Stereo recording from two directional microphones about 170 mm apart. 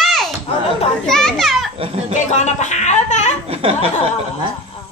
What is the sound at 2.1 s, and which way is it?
Speech, 45° left (ahead or behind).